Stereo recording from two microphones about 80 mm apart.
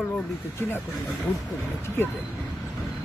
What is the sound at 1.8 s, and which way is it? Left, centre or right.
Speech, left.